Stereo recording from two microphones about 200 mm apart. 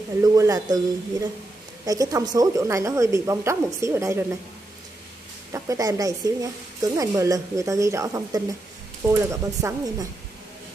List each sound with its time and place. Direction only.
0.2 s speech: 15° right (ahead or behind)
1.9 s speech: 15° right (ahead or behind)
5.5 s speech: 15° right (ahead or behind)